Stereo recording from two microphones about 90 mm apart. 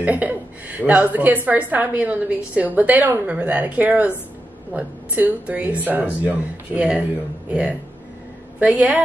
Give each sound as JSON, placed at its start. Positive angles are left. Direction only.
{"t": 0.0, "sound": "a woman's voice", "side_deg": -20}